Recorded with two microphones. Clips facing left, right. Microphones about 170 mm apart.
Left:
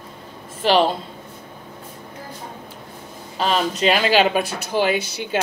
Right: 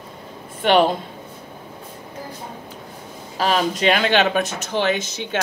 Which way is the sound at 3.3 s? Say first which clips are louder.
Right 1 dB; centre (ahead or behind).